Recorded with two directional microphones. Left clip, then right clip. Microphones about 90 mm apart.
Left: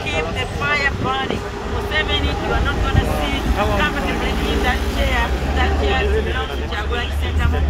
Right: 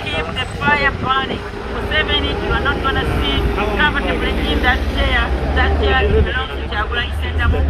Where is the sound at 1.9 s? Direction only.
20° left (ahead or behind).